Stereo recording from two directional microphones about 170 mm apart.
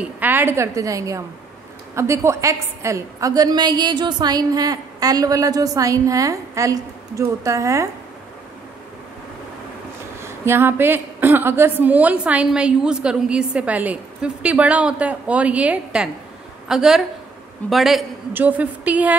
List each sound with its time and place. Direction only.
0.2 s a woman's voice: 10° right (ahead or behind)
10.2 s a woman's voice: 15° right (ahead or behind)